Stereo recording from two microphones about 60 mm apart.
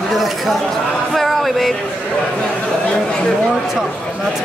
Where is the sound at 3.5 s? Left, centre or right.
Centre.